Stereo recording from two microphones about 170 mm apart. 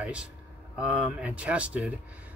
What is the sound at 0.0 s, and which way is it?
Speech, 5° right (ahead or behind).